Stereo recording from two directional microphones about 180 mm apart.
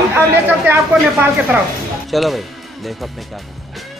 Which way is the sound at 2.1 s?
Centre (ahead or behind).